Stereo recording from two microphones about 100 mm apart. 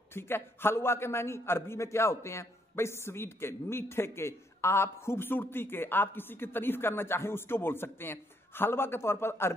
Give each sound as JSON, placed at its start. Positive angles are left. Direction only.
{"t": 0.1, "sound": "a man's voice", "side_deg": 25}